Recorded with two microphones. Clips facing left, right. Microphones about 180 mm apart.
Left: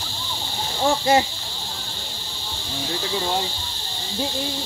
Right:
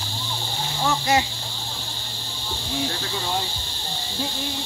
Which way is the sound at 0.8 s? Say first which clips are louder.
Left 4 dB; 30° left (ahead or behind).